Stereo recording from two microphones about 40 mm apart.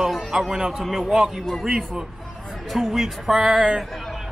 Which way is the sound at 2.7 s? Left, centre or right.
Centre.